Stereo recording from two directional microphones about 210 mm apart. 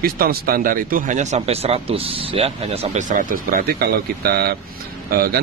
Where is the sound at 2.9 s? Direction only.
40° right (ahead or behind).